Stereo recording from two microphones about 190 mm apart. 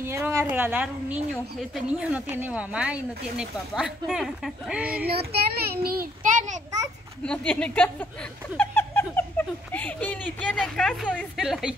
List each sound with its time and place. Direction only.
0.0 s speech: 15° right (ahead or behind)
5.0 s a child's voice: 55° right (ahead or behind)
7.2 s speech: 5° left (ahead or behind)
8.5 s a sound: 10° left (ahead or behind)
9.7 s speech: 10° left (ahead or behind)